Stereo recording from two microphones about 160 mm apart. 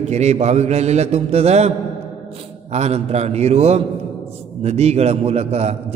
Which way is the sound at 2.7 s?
40° right (ahead or behind).